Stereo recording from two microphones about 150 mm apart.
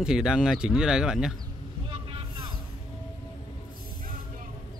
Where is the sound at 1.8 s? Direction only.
35° right (ahead or behind).